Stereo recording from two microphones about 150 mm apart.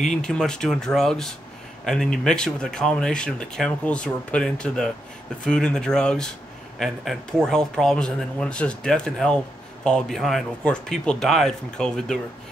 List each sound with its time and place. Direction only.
0.2 s speech: 5° left (ahead or behind)